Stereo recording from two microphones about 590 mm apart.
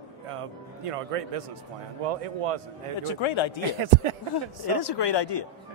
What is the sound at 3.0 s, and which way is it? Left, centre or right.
Speech, left.